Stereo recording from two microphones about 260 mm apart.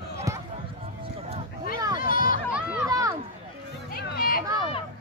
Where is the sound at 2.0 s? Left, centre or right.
Left.